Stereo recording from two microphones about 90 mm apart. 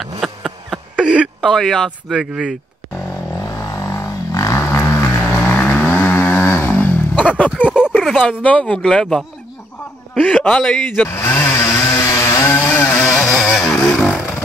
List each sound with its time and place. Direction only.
0.0 s a sound: 5° right (ahead or behind)
1.5 s speech: 5° left (ahead or behind)
3.1 s vehicle: 35° left (ahead or behind)
5.3 s vehicle: 15° left (ahead or behind)
6.7 s a sound: 15° left (ahead or behind)
7.5 s a sound: 10° right (ahead or behind)
7.9 s a sound: 5° left (ahead or behind)
8.3 s speech: 15° left (ahead or behind)
10.2 s speech: 10° left (ahead or behind)
11.1 s chainsaw: 25° left (ahead or behind)
13.2 s vehicle: 5° left (ahead or behind)
13.7 s vehicle: 15° left (ahead or behind)
13.9 s motorcycle: 10° left (ahead or behind)